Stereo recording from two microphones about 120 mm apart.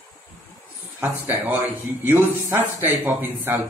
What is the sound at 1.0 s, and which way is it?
Speech, 15° right (ahead or behind).